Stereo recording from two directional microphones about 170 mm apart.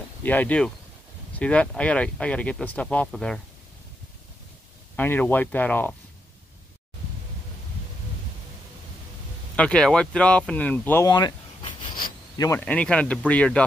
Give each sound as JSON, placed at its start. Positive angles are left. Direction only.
{"t": 0.2, "sound": "speech", "side_deg": 10}
{"t": 4.9, "sound": "speech", "side_deg": 10}
{"t": 9.6, "sound": "speech", "side_deg": 5}
{"t": 11.1, "sound": "a sound", "side_deg": 25}
{"t": 12.5, "sound": "speech", "side_deg": 10}